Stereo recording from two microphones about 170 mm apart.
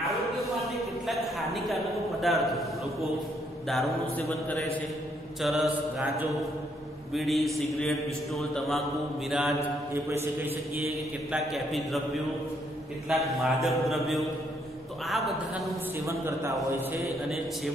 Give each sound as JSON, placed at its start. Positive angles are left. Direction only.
{"t": 0.1, "sound": "a sound", "side_deg": 0}
{"t": 2.2, "sound": "a man's voice", "side_deg": 0}
{"t": 11.5, "sound": "a man's voice", "side_deg": 0}
{"t": 13.1, "sound": "a man's voice", "side_deg": 0}
{"t": 16.1, "sound": "a man's voice", "side_deg": -15}